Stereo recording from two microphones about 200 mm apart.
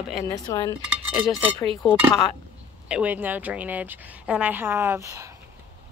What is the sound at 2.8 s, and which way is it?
A woman's voice, 5° right (ahead or behind).